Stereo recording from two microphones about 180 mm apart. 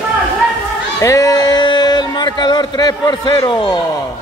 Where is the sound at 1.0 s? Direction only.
20° left (ahead or behind).